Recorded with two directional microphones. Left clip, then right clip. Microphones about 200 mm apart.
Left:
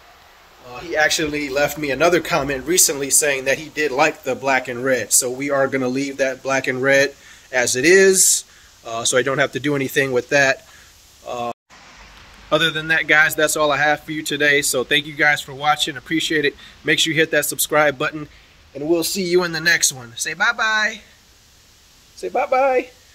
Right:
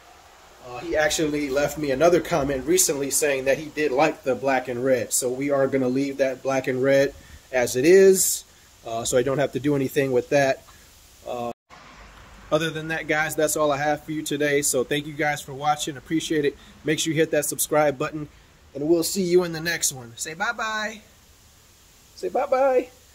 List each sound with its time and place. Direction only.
0.9 s a man's voice: 5° right (ahead or behind)
22.2 s a man's voice: 5° left (ahead or behind)